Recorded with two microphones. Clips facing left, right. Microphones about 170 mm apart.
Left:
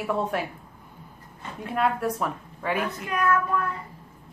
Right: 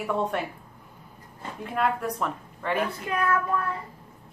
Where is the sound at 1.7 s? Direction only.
Centre (ahead or behind).